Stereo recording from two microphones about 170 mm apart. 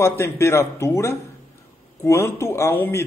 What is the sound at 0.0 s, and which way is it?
A man's voice, 15° left (ahead or behind).